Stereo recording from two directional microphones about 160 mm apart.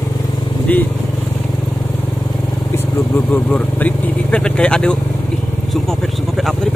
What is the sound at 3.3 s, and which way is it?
Speech, 10° left (ahead or behind).